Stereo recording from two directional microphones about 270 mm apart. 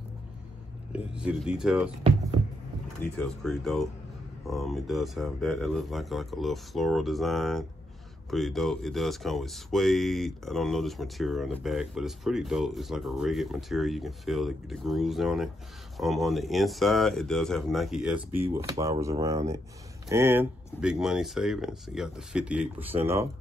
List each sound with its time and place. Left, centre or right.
0.9 s speech: centre
3.0 s speech: centre